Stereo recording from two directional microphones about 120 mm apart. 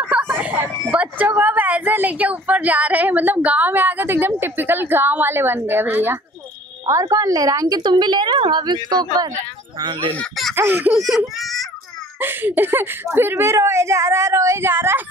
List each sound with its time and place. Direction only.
0.0 s speech: 15° right (ahead or behind)
6.9 s a woman's voice: 30° right (ahead or behind)
10.5 s speech: 15° right (ahead or behind)
10.9 s speech: 5° right (ahead or behind)
12.2 s speech: 15° right (ahead or behind)